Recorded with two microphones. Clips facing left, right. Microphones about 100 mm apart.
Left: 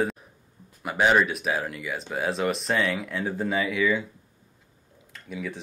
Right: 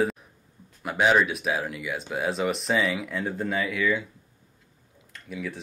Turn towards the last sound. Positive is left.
turn(degrees=0)  # may be behind; listen again after turning